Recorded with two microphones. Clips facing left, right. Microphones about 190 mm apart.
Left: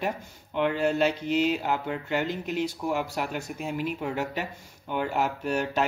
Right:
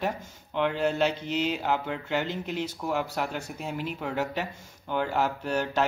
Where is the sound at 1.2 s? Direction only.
45° left (ahead or behind).